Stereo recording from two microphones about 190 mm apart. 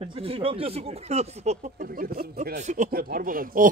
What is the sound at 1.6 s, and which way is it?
Speech, 45° right (ahead or behind).